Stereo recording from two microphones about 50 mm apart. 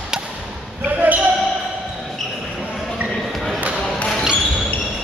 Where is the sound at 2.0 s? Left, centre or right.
Centre.